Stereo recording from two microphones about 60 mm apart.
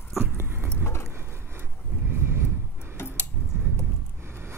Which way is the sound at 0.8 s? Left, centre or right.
Left.